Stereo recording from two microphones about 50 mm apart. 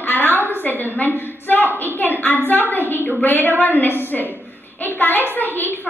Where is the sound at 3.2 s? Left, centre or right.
Left.